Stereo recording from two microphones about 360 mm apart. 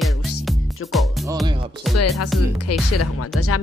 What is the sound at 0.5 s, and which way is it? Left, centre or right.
Music, centre.